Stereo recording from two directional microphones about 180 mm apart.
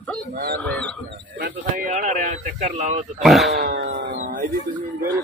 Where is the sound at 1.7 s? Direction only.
45° right (ahead or behind).